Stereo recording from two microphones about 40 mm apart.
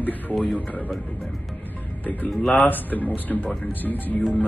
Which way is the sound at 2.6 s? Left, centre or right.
Left.